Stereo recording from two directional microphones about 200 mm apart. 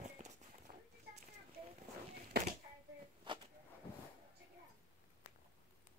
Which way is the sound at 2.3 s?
55° right (ahead or behind).